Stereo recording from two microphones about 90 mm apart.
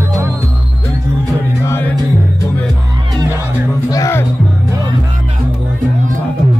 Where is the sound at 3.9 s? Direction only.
40° left (ahead or behind).